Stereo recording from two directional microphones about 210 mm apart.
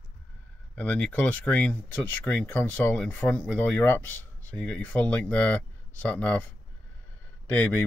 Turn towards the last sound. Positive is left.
turn(degrees=5)  # may be behind; listen again after turning